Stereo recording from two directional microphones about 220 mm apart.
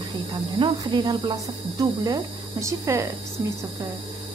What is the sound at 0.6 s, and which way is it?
Speech, 20° right (ahead or behind).